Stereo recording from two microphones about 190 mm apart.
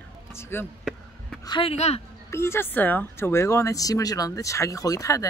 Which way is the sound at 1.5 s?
30° left (ahead or behind).